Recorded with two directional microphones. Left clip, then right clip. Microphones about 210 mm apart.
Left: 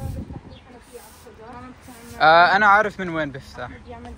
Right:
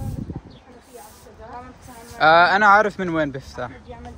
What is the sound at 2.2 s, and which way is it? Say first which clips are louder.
Speech: even; 15° right (ahead or behind).